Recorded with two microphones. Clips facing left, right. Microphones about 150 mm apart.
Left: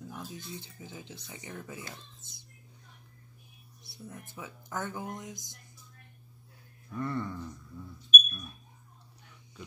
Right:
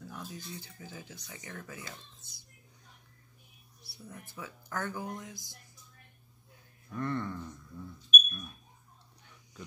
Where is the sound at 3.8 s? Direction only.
20° left (ahead or behind).